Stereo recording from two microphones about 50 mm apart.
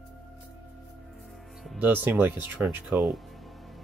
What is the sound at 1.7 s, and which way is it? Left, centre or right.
Speech, right.